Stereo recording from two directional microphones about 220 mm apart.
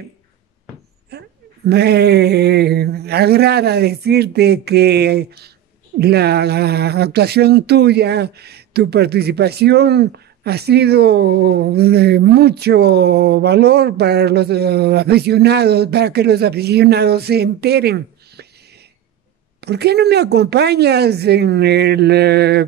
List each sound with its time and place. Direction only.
1.1 s a sound: 45° right (ahead or behind)
1.7 s speech: 45° right (ahead or behind)
19.6 s speech: 50° right (ahead or behind)